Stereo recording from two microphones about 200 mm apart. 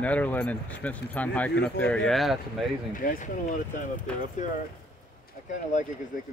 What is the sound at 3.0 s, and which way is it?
Speech, 40° left (ahead or behind).